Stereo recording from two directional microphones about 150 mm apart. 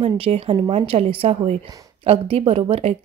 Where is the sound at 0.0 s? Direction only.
40° right (ahead or behind).